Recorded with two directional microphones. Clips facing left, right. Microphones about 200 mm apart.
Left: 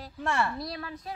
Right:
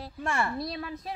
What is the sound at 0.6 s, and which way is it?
Speech, 25° right (ahead or behind).